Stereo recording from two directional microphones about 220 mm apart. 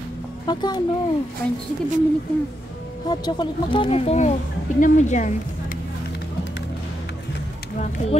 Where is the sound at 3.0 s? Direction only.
20° left (ahead or behind).